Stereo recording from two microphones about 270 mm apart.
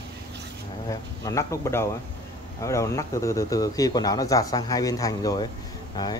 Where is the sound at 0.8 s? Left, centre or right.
Centre.